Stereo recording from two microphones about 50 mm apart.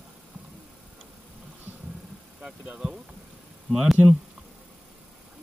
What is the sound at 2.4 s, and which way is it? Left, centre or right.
Speech, right.